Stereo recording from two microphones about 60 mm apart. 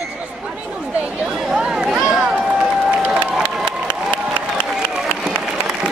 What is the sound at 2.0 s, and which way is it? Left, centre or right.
Run, centre.